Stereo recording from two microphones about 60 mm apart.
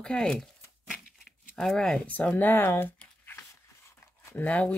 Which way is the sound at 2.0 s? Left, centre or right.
Left.